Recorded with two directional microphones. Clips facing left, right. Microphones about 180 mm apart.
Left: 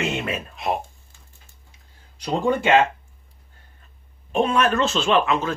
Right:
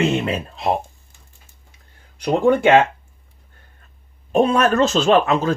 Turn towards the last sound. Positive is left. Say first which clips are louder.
# right 5 dB
turn(degrees=-40)  # may be behind; listen again after turning